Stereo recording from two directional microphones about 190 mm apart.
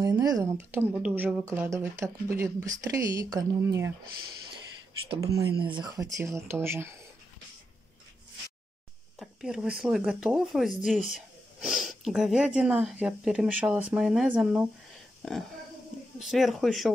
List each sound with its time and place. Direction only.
0.0 s speech: 20° right (ahead or behind)
5.2 s speech: 15° right (ahead or behind)
9.2 s speech: centre (ahead or behind)
16.2 s speech: centre (ahead or behind)